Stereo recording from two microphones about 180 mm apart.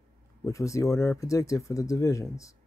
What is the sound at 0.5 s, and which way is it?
Speech, 15° left (ahead or behind).